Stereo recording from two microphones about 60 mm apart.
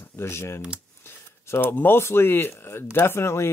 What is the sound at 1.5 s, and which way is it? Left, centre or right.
Speech, left.